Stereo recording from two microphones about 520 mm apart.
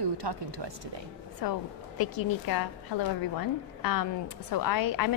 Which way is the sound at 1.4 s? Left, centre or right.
Left.